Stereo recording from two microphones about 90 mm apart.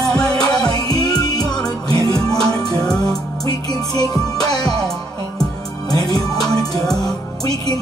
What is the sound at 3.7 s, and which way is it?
Music, 45° left (ahead or behind).